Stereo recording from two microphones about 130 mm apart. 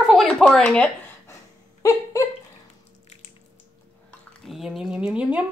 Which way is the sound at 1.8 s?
25° left (ahead or behind).